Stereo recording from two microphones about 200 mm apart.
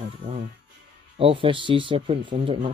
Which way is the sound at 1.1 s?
25° right (ahead or behind).